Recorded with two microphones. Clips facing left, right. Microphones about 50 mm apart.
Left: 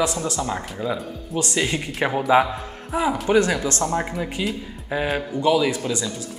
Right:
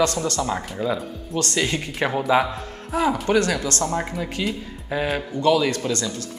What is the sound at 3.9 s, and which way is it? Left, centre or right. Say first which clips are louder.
A man's voice: left 1 dB; centre.